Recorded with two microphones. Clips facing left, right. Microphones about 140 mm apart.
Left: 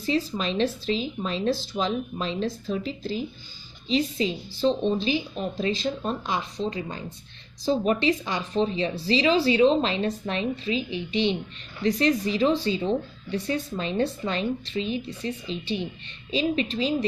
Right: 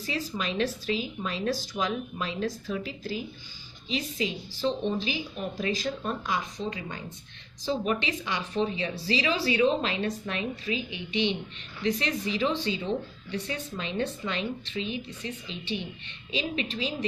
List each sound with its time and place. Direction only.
0.0 s speech: 30° left (ahead or behind)